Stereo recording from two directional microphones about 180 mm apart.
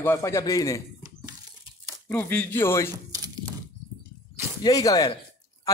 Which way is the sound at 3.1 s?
20° right (ahead or behind).